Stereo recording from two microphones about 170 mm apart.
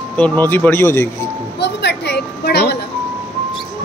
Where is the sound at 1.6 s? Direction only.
90° left.